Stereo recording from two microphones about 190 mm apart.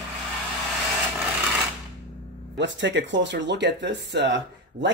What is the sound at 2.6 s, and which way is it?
Speech, 70° right (ahead or behind).